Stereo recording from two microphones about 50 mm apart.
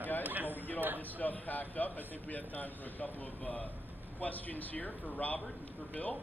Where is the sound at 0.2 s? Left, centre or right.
Right.